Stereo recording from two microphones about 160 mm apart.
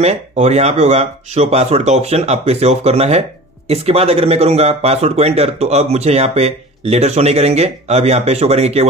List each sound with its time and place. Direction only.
0.0 s speech: 45° right (ahead or behind)